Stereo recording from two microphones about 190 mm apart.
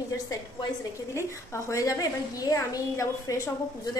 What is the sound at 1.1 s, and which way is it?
A woman's voice, 15° left (ahead or behind).